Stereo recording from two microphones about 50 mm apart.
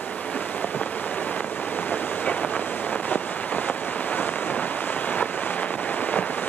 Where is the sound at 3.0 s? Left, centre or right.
Left.